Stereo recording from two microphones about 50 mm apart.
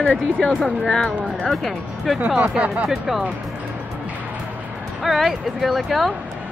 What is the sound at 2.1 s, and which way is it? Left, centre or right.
Speech, right.